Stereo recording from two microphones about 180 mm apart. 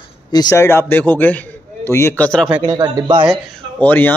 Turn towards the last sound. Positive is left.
turn(degrees=10)  # may be behind; listen again after turning